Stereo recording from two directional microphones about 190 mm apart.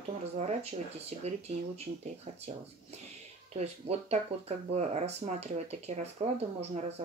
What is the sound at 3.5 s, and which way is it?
Speech, 35° right (ahead or behind).